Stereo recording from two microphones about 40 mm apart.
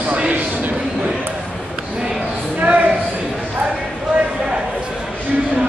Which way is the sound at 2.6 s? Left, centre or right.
Right.